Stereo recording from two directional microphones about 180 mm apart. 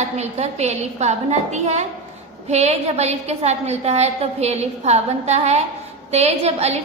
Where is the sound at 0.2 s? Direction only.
35° right (ahead or behind).